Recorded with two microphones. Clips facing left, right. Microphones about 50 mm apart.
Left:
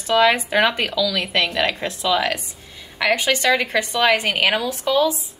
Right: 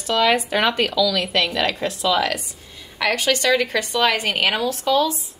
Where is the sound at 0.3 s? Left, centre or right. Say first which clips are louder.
Left 1 dB; centre.